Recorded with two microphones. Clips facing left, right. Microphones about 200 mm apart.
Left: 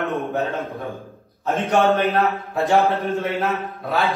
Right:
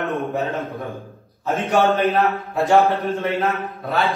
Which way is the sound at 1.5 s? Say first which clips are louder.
Even; centre (ahead or behind).